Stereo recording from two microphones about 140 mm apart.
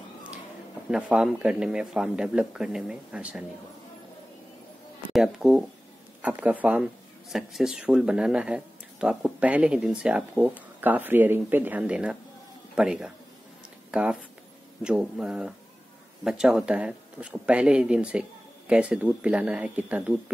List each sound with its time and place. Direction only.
0.8 s speech: 5° right (ahead or behind)
5.1 s mantra: centre (ahead or behind)
6.2 s speech: 10° right (ahead or behind)
12.7 s mantra: 5° right (ahead or behind)
13.9 s speech: 5° right (ahead or behind)
14.8 s mantra: 5° right (ahead or behind)
16.3 s speech: 5° right (ahead or behind)